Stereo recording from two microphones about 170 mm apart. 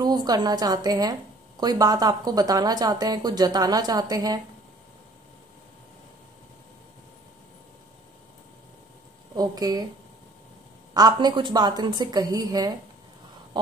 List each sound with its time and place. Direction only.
0.0 s speech: 25° right (ahead or behind)
9.4 s speech: 25° right (ahead or behind)
10.9 s speech: 25° right (ahead or behind)